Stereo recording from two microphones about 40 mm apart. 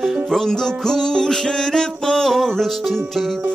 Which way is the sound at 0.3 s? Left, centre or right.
Centre.